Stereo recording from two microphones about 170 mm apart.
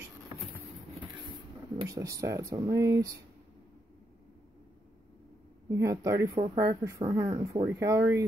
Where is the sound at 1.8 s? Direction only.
20° right (ahead or behind).